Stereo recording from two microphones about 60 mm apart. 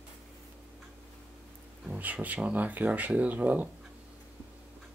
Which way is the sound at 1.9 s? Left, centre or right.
Right.